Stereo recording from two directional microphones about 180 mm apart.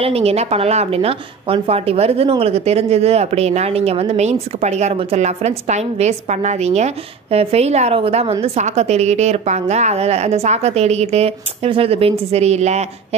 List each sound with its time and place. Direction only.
0.0 s a woman's voice: 35° right (ahead or behind)